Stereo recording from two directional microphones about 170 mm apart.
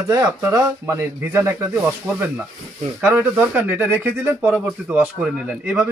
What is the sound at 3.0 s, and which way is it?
Speech, 10° right (ahead or behind).